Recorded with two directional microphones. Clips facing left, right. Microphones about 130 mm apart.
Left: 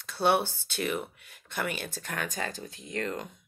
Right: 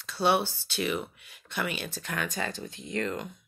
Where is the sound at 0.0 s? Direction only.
50° left (ahead or behind).